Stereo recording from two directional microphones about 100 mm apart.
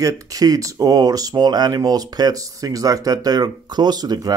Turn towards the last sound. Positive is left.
turn(degrees=-40)  # may be behind; listen again after turning